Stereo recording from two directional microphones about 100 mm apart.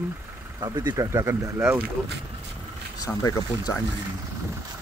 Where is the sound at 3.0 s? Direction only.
35° left (ahead or behind).